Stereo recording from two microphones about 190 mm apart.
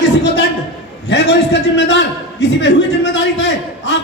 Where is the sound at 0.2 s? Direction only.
70° left (ahead or behind).